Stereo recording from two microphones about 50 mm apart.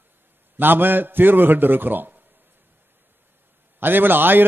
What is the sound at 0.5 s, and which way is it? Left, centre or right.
A man's voice, right.